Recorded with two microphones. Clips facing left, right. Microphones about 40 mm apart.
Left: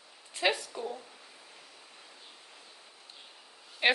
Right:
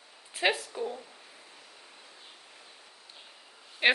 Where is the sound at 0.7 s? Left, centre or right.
Centre.